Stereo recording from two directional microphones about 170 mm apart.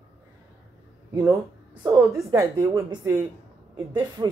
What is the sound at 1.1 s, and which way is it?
Speech, 20° right (ahead or behind).